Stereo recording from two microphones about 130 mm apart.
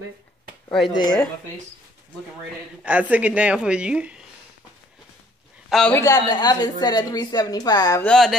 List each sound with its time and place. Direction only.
0.7 s speech: centre (ahead or behind)
0.9 s a woman's voice: 35° left (ahead or behind)
2.8 s a woman's voice: 10° right (ahead or behind)
5.7 s a man's voice: centre (ahead or behind)
5.9 s a woman's voice: 25° left (ahead or behind)
8.0 s speech: 5° left (ahead or behind)